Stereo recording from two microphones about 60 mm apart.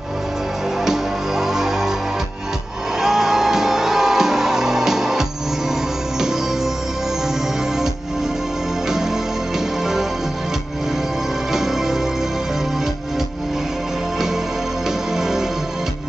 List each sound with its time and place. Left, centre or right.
0.8 s music: centre
3.0 s music: centre
11.5 s music: centre